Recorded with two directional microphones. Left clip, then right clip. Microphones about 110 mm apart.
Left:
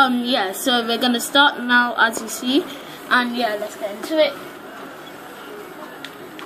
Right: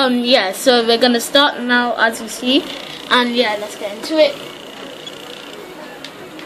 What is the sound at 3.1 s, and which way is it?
Speech, 60° right (ahead or behind).